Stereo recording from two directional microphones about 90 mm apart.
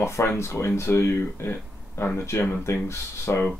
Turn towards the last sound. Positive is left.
turn(degrees=30)  # may be behind; listen again after turning